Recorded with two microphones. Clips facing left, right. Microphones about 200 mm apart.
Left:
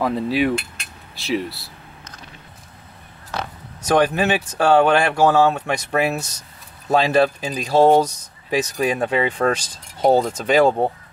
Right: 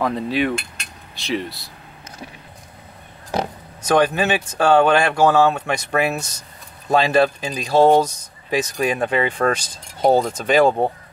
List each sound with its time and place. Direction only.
0.0 s mechanisms: 5° left (ahead or behind)
3.8 s speech: 5° left (ahead or behind)